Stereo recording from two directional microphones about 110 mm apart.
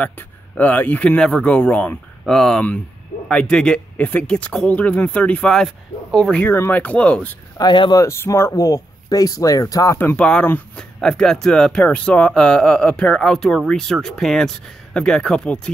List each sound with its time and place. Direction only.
0.6 s speech: 15° left (ahead or behind)
7.5 s speech: 45° left (ahead or behind)
8.0 s speech: 25° left (ahead or behind)
9.9 s speech: 15° left (ahead or behind)